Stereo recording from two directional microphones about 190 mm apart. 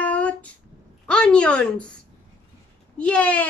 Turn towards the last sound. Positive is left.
turn(degrees=5)  # may be behind; listen again after turning